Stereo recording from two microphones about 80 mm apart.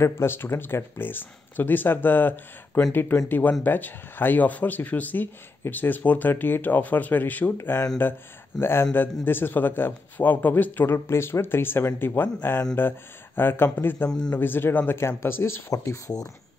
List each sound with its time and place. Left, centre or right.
0.0 s speech: left
15.7 s speech: left